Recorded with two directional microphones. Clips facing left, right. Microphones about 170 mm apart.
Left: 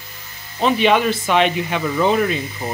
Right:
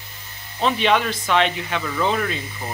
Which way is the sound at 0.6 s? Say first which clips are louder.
Left 4 dB; 10° left (ahead or behind).